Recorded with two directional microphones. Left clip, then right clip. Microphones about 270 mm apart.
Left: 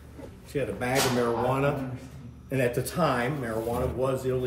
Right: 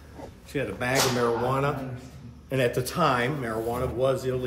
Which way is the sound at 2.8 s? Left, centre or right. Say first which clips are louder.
Right 2 dB; centre.